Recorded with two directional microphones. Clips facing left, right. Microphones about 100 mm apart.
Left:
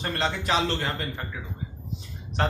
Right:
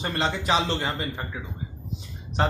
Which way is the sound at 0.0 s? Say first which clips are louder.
Right 1 dB; 10° right (ahead or behind).